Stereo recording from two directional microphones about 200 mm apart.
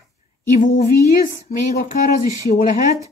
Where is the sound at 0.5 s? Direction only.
40° left (ahead or behind).